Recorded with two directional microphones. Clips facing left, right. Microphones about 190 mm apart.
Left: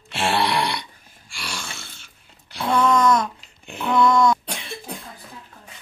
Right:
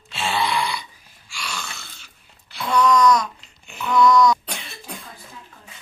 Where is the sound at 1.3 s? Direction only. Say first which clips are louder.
Right 1 dB; 50° left (ahead or behind).